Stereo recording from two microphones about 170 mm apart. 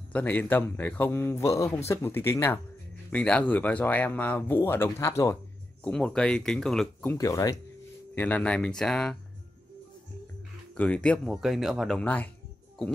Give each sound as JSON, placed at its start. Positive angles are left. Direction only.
{"t": 0.1, "sound": "speech", "side_deg": 10}
{"t": 5.9, "sound": "speech", "side_deg": 5}
{"t": 7.2, "sound": "speech", "side_deg": 20}
{"t": 10.8, "sound": "speech", "side_deg": 5}
{"t": 12.0, "sound": "speech", "side_deg": 10}